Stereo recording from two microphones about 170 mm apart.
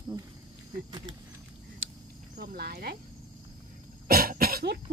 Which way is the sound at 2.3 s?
65° right (ahead or behind).